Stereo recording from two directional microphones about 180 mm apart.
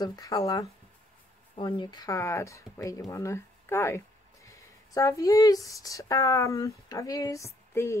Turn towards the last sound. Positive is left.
turn(degrees=15)  # may be behind; listen again after turning